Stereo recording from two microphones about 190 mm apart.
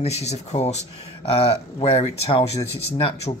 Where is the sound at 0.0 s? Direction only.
35° left (ahead or behind).